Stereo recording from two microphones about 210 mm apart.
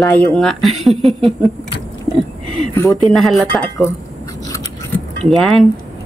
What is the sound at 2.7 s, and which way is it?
Speech, 15° left (ahead or behind).